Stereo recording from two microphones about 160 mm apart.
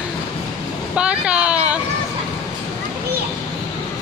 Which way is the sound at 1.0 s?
5° right (ahead or behind).